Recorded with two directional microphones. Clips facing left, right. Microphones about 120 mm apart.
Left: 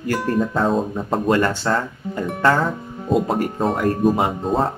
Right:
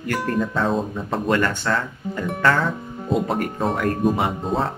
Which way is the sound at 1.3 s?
30° left (ahead or behind).